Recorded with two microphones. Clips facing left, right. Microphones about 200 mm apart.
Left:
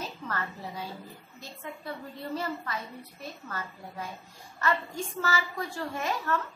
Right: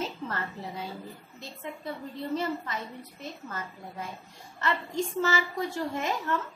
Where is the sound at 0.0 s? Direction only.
25° right (ahead or behind).